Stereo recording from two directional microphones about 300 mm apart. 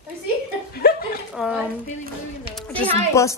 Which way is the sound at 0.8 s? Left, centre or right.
Left.